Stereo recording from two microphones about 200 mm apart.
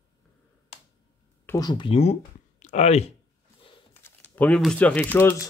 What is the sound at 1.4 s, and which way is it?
Speech, 15° left (ahead or behind).